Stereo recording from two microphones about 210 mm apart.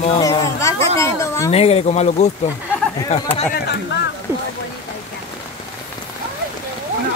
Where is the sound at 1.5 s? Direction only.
30° left (ahead or behind).